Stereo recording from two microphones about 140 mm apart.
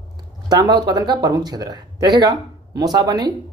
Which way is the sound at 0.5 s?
30° right (ahead or behind).